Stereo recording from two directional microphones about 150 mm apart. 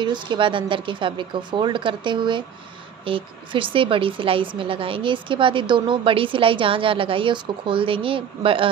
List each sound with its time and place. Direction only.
0.0 s a woman's voice: 30° right (ahead or behind)